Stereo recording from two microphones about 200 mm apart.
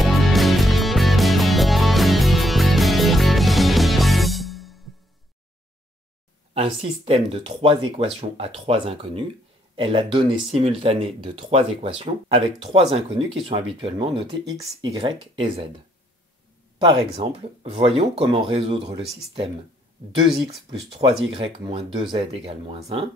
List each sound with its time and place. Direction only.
0.0 s music: centre (ahead or behind)
6.5 s speech: 30° right (ahead or behind)
16.7 s speech: 25° right (ahead or behind)
21.3 s speech: 25° right (ahead or behind)